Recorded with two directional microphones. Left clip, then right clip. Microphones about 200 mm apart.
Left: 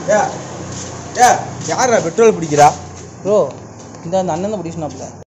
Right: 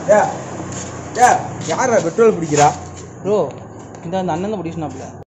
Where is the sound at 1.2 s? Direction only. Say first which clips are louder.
Left 1 dB; 25° left (ahead or behind).